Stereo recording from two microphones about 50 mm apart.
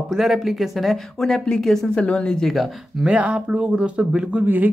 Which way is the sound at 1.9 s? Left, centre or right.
Left.